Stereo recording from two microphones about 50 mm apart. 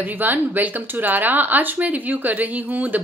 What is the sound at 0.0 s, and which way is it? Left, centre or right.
Speech, right.